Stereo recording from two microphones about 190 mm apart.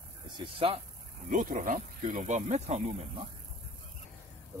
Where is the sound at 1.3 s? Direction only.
45° right (ahead or behind).